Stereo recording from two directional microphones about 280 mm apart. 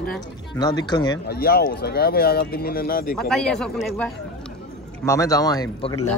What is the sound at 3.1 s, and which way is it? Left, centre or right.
A man's voice, centre.